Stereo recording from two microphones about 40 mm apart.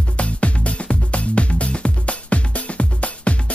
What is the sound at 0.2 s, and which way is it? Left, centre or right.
Music, left.